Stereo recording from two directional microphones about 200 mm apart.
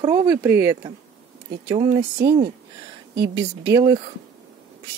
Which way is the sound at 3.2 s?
60° right (ahead or behind).